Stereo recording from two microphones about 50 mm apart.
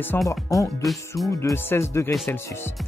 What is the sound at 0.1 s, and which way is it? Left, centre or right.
Speech, left.